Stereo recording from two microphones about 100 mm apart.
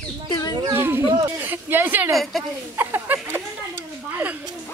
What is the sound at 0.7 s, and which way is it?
Speech, 20° right (ahead or behind).